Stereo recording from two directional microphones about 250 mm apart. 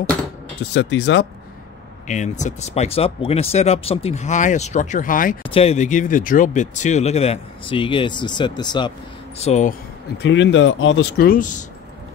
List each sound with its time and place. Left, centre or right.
0.7 s speech: left
2.0 s speech: left
5.4 s speech: left
9.4 s speech: left
10.1 s speech: left